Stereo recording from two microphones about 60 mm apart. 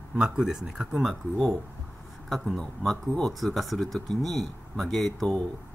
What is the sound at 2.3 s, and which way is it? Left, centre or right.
Speech, centre.